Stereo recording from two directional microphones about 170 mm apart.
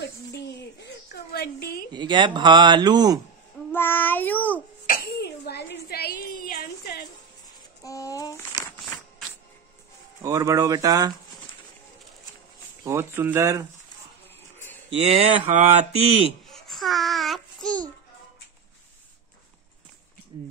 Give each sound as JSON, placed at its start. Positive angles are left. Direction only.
{"t": 0.0, "sound": "a sound", "side_deg": 80}
{"t": 1.9, "sound": "speech", "side_deg": -25}
{"t": 3.7, "sound": "child singing", "side_deg": 10}
{"t": 4.8, "sound": "a sound", "side_deg": 65}
{"t": 7.8, "sound": "a sound", "side_deg": 20}
{"t": 10.2, "sound": "speech", "side_deg": -20}
{"t": 12.8, "sound": "speech", "side_deg": -15}
{"t": 14.9, "sound": "speech", "side_deg": -35}
{"t": 16.4, "sound": "babbling", "side_deg": 0}